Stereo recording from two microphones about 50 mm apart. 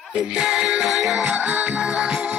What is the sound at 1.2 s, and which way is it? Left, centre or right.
Music, right.